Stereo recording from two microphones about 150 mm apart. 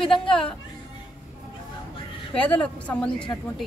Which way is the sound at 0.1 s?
35° left (ahead or behind).